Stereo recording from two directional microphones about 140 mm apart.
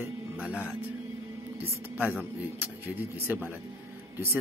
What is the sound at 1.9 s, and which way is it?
Speech, 10° right (ahead or behind).